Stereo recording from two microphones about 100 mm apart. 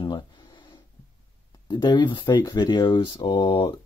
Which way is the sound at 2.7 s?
50° left (ahead or behind).